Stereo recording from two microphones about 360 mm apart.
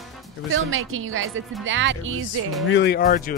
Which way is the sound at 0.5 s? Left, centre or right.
Right.